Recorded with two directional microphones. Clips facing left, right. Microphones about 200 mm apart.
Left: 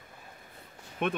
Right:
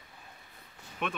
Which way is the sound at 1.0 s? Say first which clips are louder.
Left 5 dB; 50° left (ahead or behind).